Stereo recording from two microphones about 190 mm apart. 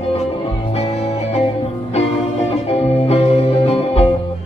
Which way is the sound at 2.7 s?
35° left (ahead or behind).